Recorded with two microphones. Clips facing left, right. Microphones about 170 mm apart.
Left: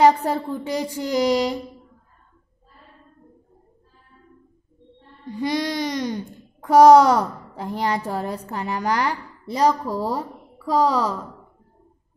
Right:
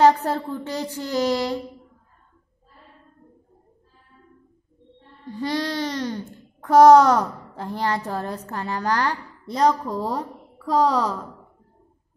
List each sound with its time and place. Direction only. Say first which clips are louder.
0.0 s speech: left 1 dB; 10° left (ahead or behind)
5.2 s a child's voice: left 2 dB; 15° left (ahead or behind)